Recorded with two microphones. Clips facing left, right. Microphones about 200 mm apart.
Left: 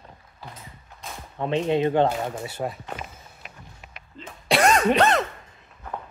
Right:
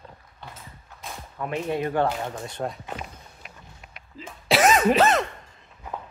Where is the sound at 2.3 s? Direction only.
5° left (ahead or behind).